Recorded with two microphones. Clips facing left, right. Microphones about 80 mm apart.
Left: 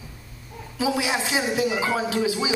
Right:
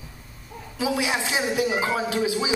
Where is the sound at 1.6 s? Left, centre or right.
Right.